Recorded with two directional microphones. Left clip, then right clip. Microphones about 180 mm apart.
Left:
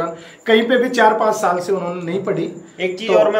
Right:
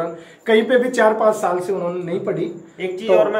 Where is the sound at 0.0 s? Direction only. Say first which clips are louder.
Left 2 dB; 15° right (ahead or behind).